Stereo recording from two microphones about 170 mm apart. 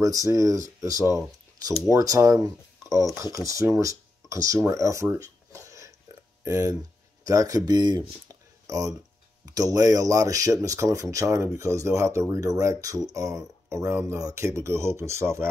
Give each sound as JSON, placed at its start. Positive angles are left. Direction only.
{"t": 0.0, "sound": "speech", "side_deg": -20}
{"t": 6.1, "sound": "a sound", "side_deg": -20}
{"t": 6.4, "sound": "speech", "side_deg": -20}